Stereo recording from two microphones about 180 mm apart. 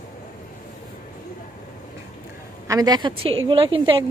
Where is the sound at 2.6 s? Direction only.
20° right (ahead or behind).